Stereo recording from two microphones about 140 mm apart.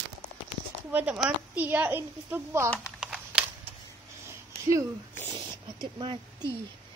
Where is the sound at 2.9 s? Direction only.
5° right (ahead or behind).